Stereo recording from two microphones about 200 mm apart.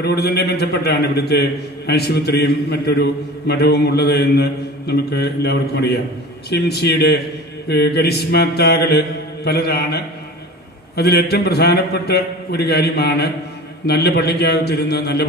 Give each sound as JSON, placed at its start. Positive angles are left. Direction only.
{"t": 0.0, "sound": "a man's voice", "side_deg": 55}